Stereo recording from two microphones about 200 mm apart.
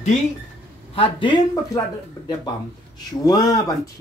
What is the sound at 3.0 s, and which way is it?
Speech, 20° left (ahead or behind).